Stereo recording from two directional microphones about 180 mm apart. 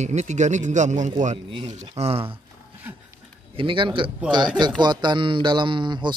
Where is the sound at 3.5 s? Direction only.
30° right (ahead or behind).